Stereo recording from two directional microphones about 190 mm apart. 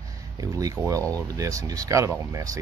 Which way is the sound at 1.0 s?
10° left (ahead or behind).